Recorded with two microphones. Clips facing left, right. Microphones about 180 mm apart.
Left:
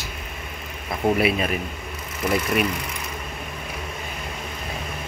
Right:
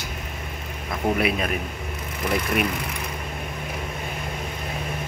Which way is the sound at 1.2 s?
5° left (ahead or behind).